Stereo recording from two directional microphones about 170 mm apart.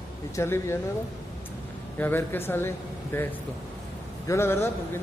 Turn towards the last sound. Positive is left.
turn(degrees=15)  # may be behind; listen again after turning